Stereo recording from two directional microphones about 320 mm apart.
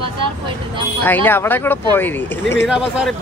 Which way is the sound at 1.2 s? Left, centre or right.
Centre.